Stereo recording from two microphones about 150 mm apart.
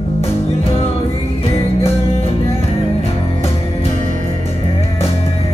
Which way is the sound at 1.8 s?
40° left (ahead or behind).